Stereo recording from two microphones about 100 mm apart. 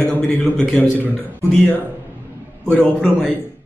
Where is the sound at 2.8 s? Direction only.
5° left (ahead or behind).